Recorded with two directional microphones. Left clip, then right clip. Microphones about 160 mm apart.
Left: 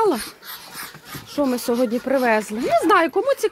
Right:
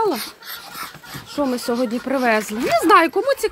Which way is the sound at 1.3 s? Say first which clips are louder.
Even; 15° left (ahead or behind).